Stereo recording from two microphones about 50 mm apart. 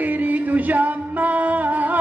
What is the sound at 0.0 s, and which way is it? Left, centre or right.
Music, right.